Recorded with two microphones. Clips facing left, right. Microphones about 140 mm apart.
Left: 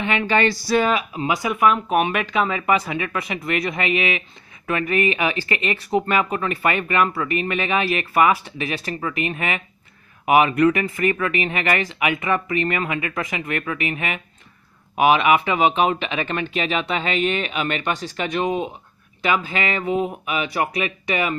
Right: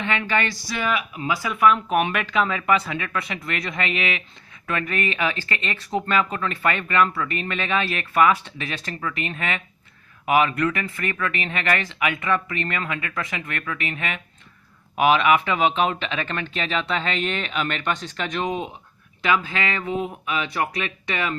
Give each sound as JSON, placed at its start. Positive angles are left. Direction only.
{"t": 0.2, "sound": "speech", "side_deg": 30}
{"t": 1.2, "sound": "speech", "side_deg": 20}